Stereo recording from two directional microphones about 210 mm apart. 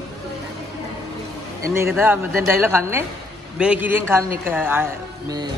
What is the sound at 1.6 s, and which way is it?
A woman's voice, 15° right (ahead or behind).